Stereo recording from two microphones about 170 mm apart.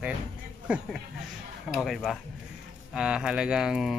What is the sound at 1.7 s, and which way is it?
Speech, centre (ahead or behind).